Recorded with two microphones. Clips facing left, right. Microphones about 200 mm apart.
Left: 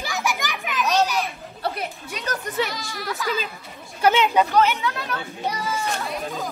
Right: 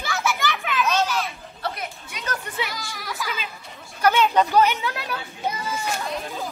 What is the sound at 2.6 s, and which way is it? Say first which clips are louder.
Speech: left 4 dB; centre (ahead or behind).